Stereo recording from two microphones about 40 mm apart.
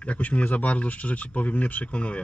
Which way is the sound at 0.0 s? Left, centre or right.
Left.